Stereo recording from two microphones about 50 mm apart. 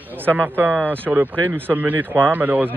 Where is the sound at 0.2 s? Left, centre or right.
Right.